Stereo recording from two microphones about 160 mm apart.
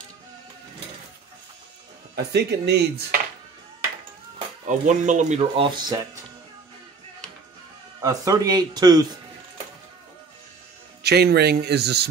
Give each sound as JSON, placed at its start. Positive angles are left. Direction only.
{"t": 2.1, "sound": "a man's voice", "side_deg": -90}
{"t": 4.6, "sound": "speech", "side_deg": -50}
{"t": 8.0, "sound": "speech", "side_deg": -20}
{"t": 11.0, "sound": "a man's voice", "side_deg": -90}